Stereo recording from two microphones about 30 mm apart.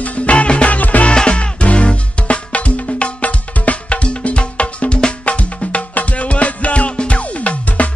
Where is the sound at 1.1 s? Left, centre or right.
Left.